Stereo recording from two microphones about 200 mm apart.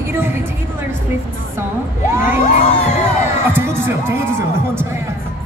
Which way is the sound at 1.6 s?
10° right (ahead or behind).